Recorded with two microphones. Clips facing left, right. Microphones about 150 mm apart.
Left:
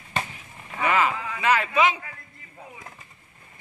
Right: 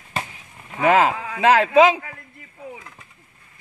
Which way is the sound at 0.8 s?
90° right.